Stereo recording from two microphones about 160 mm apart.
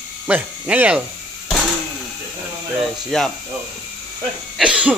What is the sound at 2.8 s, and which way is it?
Speech, centre (ahead or behind).